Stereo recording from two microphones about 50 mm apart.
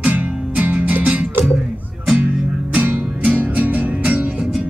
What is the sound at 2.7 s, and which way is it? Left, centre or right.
Music, right.